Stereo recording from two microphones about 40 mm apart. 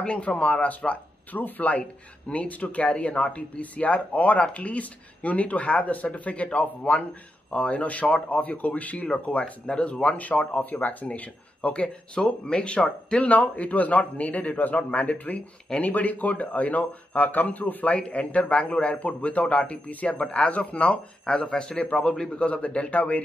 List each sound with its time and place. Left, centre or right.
0.0 s speech: left
17.8 s a man's voice: left
22.3 s speech: left